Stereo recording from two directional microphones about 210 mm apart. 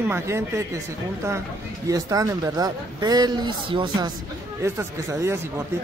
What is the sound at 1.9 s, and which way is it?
Speech, 15° right (ahead or behind).